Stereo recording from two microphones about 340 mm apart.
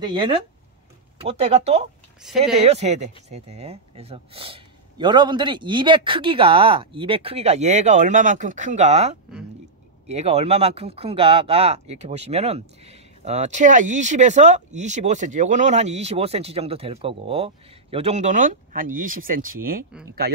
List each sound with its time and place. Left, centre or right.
0.0 s speech: centre
2.2 s speech: centre
2.6 s speech: centre